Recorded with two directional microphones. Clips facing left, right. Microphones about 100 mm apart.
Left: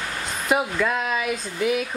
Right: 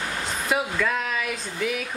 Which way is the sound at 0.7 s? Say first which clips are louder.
Left 2 dB; 15° left (ahead or behind).